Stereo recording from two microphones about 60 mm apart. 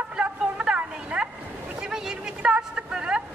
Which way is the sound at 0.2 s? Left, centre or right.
Centre.